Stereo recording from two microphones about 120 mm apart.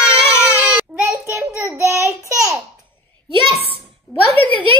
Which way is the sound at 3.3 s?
45° right (ahead or behind).